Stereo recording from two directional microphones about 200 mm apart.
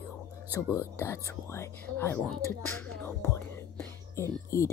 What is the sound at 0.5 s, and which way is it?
Speech, 15° left (ahead or behind).